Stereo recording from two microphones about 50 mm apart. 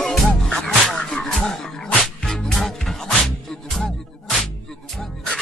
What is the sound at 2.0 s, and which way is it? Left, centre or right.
Music, centre.